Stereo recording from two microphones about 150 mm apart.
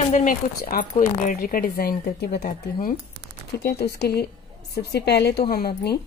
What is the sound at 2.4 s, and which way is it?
Speech, 70° left (ahead or behind).